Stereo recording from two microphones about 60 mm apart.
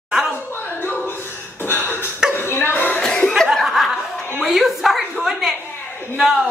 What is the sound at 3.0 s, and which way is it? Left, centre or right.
Chuckle, centre.